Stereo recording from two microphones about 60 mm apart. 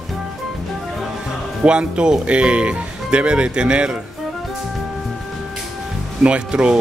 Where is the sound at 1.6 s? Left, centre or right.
Centre.